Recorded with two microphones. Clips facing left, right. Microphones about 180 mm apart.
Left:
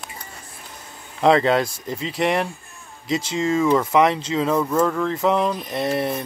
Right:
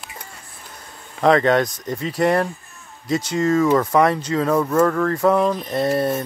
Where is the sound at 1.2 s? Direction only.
25° left (ahead or behind).